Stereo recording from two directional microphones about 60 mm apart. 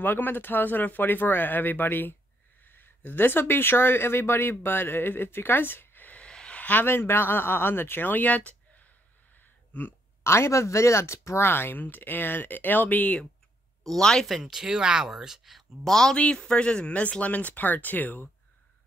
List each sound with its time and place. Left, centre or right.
0.0 s speech: left
6.2 s a sound: centre
6.6 s speech: left
9.4 s a sound: left
10.2 s speech: left
13.8 s speech: centre
14.2 s speech: centre
15.8 s speech: centre; by 18.3 s left